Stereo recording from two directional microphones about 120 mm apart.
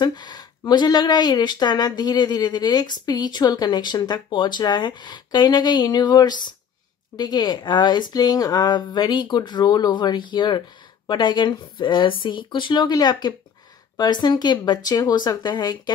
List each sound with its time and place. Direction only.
0.0 s speech: 35° left (ahead or behind)